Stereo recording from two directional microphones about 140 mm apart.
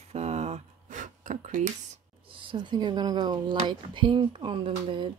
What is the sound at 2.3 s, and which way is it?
Speech, 40° right (ahead or behind).